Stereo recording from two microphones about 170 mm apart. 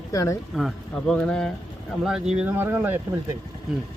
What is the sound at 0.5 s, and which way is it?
A man's voice, centre (ahead or behind).